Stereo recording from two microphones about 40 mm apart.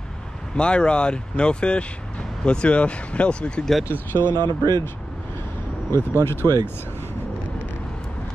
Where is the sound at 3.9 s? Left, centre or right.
Left.